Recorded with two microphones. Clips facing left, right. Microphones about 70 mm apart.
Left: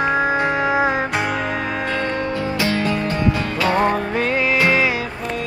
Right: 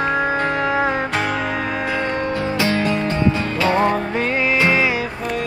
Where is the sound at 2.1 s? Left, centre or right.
Right.